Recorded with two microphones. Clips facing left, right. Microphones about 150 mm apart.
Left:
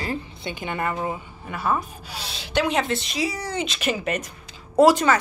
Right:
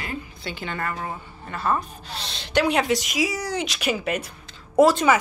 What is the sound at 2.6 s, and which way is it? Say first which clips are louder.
Speech: right 2 dB; 5° right (ahead or behind).